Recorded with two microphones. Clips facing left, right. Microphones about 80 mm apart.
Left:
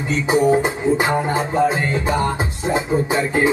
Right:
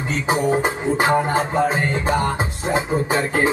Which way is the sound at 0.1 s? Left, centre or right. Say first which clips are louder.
Left 4 dB; right.